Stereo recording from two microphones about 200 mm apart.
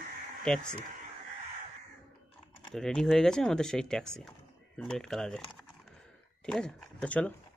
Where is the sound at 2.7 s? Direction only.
Centre (ahead or behind).